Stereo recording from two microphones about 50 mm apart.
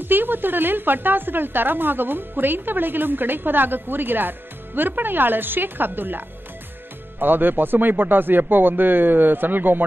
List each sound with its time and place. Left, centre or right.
0.0 s a woman's voice: right